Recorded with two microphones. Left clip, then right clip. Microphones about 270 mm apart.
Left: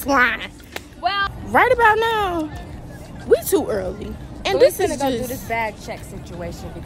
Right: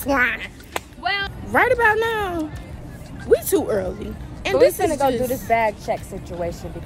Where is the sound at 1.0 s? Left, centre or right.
Left.